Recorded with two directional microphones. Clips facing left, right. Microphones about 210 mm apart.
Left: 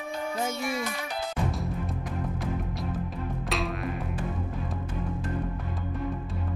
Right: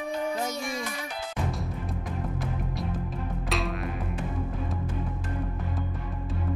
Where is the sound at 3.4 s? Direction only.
Centre (ahead or behind).